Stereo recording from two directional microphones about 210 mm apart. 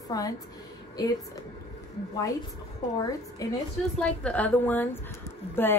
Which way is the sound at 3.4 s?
15° left (ahead or behind).